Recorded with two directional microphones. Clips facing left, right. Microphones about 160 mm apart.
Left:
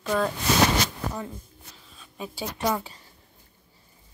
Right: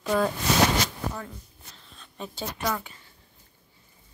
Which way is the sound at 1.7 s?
5° left (ahead or behind).